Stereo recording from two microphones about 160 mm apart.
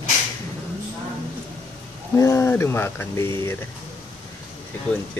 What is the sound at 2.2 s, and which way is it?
Speech, 15° left (ahead or behind).